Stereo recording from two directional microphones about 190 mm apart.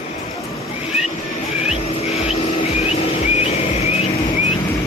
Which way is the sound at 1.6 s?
30° left (ahead or behind).